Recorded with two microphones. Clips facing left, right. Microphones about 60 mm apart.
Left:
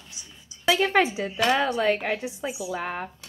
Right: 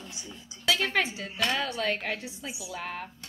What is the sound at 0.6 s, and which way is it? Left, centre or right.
Speech, left.